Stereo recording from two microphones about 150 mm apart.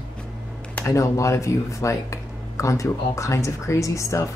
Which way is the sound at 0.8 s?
20° left (ahead or behind).